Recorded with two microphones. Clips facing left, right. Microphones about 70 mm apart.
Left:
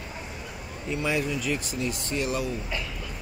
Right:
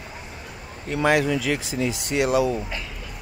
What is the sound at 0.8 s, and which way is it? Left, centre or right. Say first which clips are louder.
Speech: right 7 dB; right.